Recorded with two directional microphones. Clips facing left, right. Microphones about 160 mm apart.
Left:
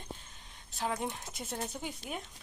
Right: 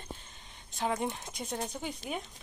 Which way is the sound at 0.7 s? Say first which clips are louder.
Right 3 dB; centre (ahead or behind).